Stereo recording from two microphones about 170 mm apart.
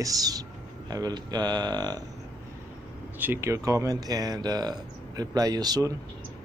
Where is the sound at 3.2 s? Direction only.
15° right (ahead or behind).